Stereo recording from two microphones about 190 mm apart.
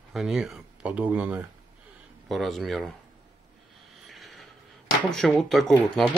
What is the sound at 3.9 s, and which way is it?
Vehicle, centre (ahead or behind).